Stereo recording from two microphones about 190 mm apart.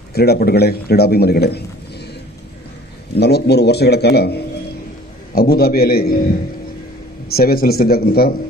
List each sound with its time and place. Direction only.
0.1 s a man's voice: 55° left (ahead or behind)
3.2 s a man's voice: 60° left (ahead or behind)
7.2 s speech: 55° left (ahead or behind)